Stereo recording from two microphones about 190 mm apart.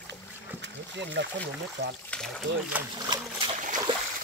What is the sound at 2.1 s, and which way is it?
Speech, 5° left (ahead or behind).